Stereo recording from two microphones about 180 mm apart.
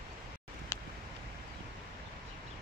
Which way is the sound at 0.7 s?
20° left (ahead or behind).